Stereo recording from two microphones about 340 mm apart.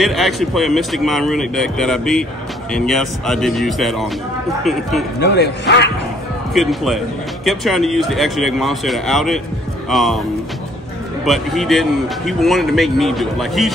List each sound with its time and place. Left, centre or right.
0.0 s a man's voice: centre
5.2 s speech: left
6.5 s a man's voice: centre
11.2 s a man's voice: centre